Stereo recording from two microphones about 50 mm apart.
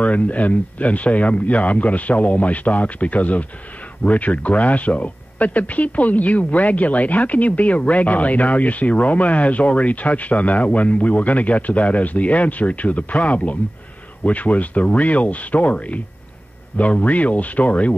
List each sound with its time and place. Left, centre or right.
0.0 s speech: left